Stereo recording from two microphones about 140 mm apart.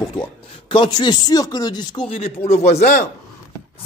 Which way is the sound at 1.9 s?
40° left (ahead or behind).